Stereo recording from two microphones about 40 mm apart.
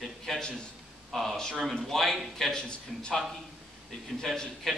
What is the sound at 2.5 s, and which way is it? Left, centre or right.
Speech, left.